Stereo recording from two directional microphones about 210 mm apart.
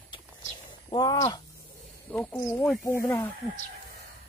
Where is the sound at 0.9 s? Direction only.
20° left (ahead or behind).